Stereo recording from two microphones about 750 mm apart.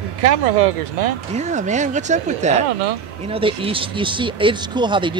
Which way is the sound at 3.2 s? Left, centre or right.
Centre.